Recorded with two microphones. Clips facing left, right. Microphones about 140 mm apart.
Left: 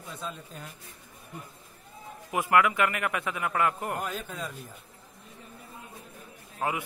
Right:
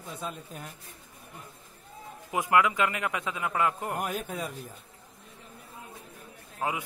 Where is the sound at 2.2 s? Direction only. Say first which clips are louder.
Left 1 dB; 15° right (ahead or behind).